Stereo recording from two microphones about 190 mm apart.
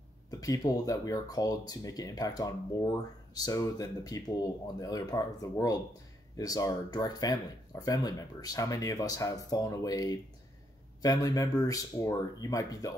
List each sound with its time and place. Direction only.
0.3 s speech: 20° left (ahead or behind)